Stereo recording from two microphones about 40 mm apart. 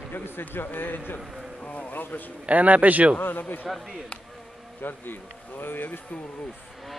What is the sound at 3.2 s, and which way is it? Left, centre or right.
Speech, left.